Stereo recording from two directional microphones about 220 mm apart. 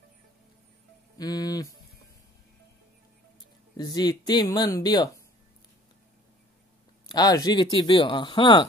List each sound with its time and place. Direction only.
1.1 s a sound: 15° left (ahead or behind)
3.7 s speech: 20° left (ahead or behind)
7.1 s speech: 15° left (ahead or behind)